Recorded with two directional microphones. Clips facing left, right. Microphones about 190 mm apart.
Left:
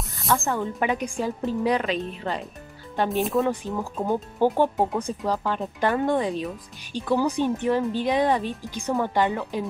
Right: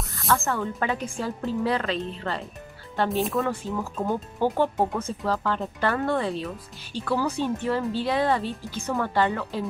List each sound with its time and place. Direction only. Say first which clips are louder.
0.3 s speech: left 1 dB; 15° left (ahead or behind)